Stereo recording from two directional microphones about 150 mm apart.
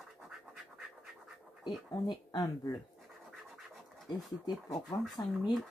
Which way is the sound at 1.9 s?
25° left (ahead or behind).